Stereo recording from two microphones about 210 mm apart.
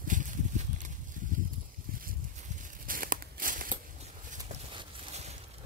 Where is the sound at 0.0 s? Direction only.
40° right (ahead or behind).